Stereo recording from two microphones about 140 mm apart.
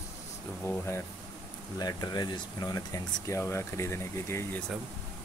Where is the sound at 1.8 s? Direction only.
30° left (ahead or behind).